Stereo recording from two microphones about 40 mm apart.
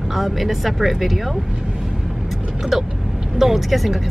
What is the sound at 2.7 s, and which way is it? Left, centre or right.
Speech, centre.